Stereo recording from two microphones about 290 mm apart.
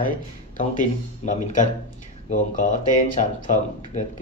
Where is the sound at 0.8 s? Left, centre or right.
Left.